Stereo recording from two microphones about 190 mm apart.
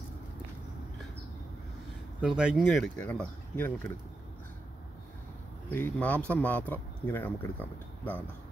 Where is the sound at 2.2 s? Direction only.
5° right (ahead or behind).